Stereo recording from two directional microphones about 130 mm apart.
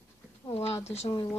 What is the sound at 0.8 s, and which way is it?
Speech, 55° left (ahead or behind).